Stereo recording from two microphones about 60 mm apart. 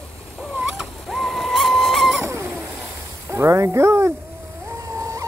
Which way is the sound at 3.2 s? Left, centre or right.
Right.